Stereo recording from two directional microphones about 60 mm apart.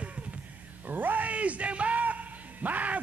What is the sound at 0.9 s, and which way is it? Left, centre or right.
Bellow, right.